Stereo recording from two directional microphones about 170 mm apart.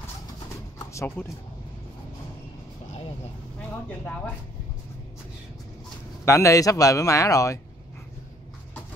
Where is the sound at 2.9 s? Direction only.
35° left (ahead or behind).